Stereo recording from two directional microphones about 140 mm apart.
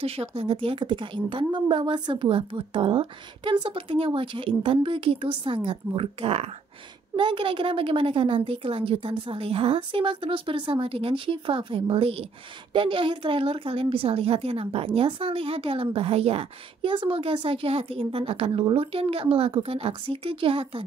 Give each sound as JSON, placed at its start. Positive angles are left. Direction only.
{"t": 0.0, "sound": "speech", "side_deg": -45}